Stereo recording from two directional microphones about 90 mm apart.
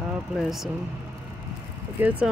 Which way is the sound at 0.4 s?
5° right (ahead or behind).